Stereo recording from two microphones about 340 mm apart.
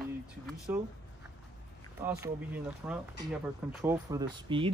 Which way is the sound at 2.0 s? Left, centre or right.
Centre.